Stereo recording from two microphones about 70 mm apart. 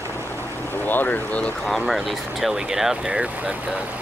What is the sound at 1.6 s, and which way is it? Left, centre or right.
Speech, centre.